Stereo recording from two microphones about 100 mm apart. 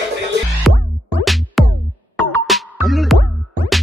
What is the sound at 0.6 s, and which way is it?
Music, centre (ahead or behind).